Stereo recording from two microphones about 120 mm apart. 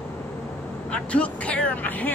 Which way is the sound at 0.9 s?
10° left (ahead or behind).